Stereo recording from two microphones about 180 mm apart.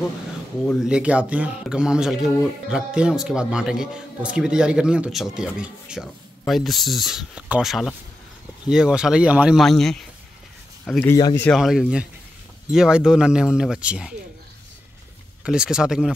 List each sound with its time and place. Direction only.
0.7 s speech: 5° right (ahead or behind); by 11.1 s 10° left (ahead or behind)
11.1 s speech: 20° left (ahead or behind)
11.4 s speech: centre (ahead or behind)
15.4 s speech: 5° right (ahead or behind)